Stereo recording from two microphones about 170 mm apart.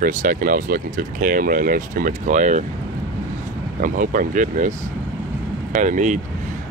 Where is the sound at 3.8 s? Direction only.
50° right (ahead or behind).